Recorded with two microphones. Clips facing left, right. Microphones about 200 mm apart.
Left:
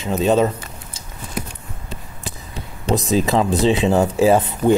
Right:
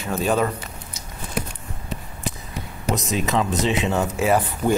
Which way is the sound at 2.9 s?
35° left (ahead or behind).